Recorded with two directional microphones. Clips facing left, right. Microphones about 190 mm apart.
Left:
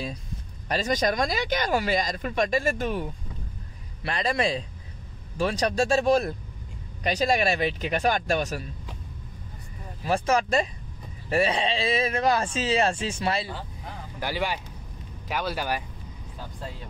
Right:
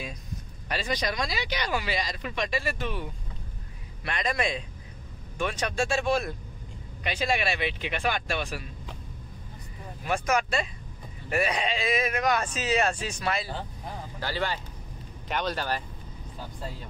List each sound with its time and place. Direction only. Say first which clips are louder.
0.7 s speech: left 5 dB; 40° left (ahead or behind)
4.0 s speech: left 3 dB; 30° left (ahead or behind)
10.0 s a man's voice: left 3 dB; 30° left (ahead or behind)
14.2 s speech: left 2 dB; 15° left (ahead or behind)